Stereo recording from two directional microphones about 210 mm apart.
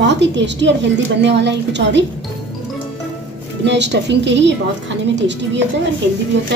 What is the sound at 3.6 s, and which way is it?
A woman's voice, 55° right (ahead or behind).